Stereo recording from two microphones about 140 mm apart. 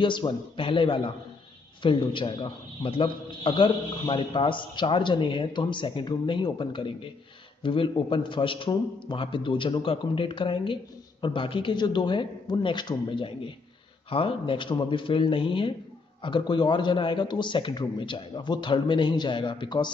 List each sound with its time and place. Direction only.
0.0 s a man's voice: 35° left (ahead or behind)